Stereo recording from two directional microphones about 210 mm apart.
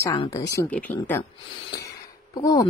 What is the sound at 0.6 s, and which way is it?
Speech, 5° left (ahead or behind).